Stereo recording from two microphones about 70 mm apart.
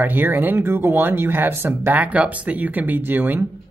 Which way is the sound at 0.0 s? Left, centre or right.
Right.